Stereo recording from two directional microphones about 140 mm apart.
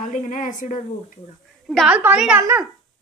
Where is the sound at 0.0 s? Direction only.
65° left (ahead or behind).